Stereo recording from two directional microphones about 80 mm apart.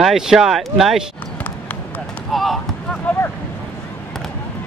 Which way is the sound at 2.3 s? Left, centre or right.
Centre.